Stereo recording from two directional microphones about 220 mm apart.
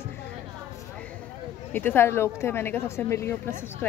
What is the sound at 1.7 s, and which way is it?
Speech, 10° left (ahead or behind).